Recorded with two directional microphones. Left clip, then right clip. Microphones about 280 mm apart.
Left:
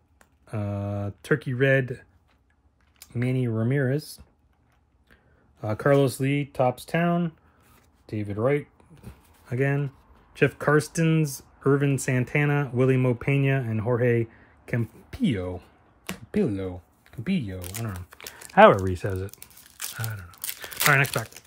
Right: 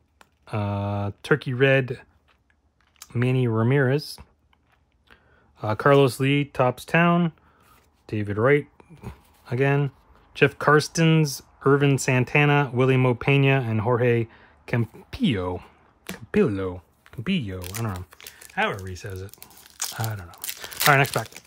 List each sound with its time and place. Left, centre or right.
0.2 s speech: centre
17.6 s speech: centre
19.8 s crumpling: centre